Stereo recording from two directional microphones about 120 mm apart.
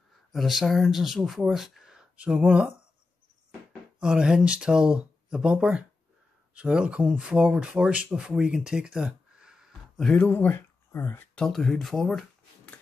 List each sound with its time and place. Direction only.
0.3 s speech: centre (ahead or behind)
4.0 s speech: 5° right (ahead or behind)
10.2 s speech: 15° left (ahead or behind)
11.3 s speech: 5° left (ahead or behind)